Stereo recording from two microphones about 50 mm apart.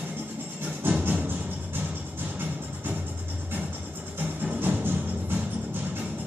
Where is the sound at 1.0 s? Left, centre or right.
Right.